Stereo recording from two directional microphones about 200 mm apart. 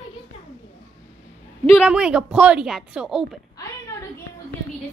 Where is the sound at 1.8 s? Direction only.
5° right (ahead or behind).